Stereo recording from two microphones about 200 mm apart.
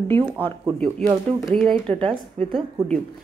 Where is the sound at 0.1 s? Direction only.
10° left (ahead or behind).